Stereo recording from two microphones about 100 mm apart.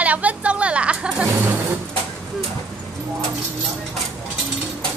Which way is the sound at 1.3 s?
25° right (ahead or behind).